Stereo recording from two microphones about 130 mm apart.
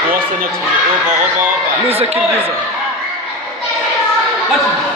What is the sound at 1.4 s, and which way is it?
Speech, 15° right (ahead or behind).